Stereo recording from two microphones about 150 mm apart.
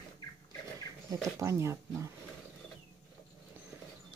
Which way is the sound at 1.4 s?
20° right (ahead or behind).